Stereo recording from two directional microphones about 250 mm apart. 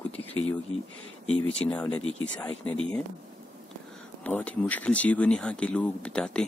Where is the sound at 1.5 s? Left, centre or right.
Centre.